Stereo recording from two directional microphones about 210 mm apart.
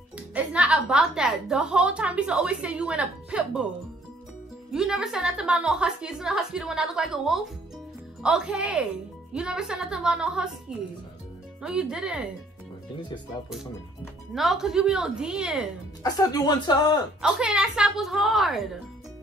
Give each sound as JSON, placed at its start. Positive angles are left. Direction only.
{"t": 0.3, "sound": "a woman's voice", "side_deg": -5}
{"t": 4.7, "sound": "a woman's voice", "side_deg": -5}
{"t": 11.6, "sound": "a woman's voice", "side_deg": -5}
{"t": 14.3, "sound": "a woman's voice", "side_deg": 0}
{"t": 16.0, "sound": "speech", "side_deg": 15}
{"t": 17.2, "sound": "a woman's voice", "side_deg": -5}